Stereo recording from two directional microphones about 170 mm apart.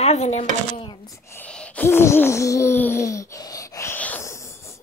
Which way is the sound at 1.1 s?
15° left (ahead or behind).